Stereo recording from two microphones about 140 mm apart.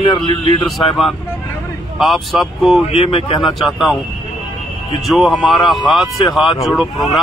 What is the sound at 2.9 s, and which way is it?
Speech, 45° left (ahead or behind).